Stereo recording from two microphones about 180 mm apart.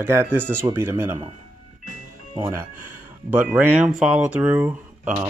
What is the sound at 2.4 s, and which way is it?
Speech, 10° right (ahead or behind).